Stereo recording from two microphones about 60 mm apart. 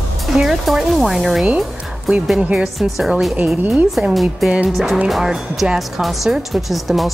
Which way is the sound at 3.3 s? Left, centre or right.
Right.